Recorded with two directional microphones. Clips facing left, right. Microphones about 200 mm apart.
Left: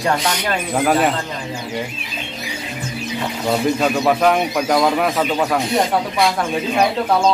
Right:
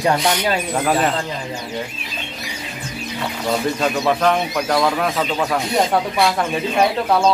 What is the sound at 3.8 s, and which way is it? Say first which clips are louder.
Speech: left 2 dB; 5° left (ahead or behind).